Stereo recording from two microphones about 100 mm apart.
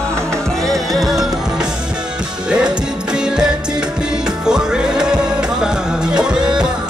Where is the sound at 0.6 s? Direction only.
Centre (ahead or behind).